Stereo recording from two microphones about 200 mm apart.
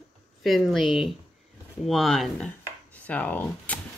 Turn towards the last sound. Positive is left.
turn(degrees=10)  # may be behind; listen again after turning